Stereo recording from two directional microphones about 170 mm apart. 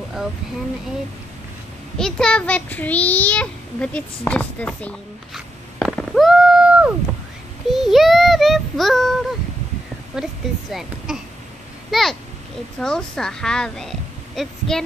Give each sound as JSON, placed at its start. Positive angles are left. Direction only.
{"t": 2.0, "sound": "a child's voice", "side_deg": 5}
{"t": 5.8, "sound": "a sound", "side_deg": 0}
{"t": 7.7, "sound": "child singing", "side_deg": 0}
{"t": 10.7, "sound": "a woman's voice", "side_deg": 0}